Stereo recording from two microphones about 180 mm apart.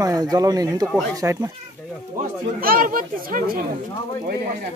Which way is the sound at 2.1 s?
55° right (ahead or behind).